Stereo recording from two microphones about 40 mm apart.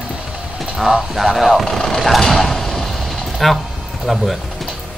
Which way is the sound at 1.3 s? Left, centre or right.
Centre.